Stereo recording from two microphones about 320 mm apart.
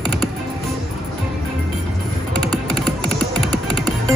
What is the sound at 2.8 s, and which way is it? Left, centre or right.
Music, centre.